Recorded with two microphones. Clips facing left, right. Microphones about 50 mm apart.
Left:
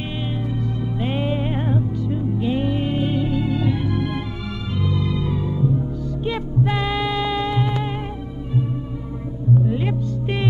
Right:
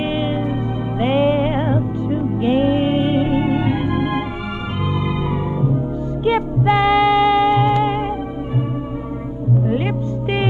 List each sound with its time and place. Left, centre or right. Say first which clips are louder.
0.0 s music: right 7 dB; right
6.2 s music: right 7 dB; right
9.7 s music: right 3 dB; right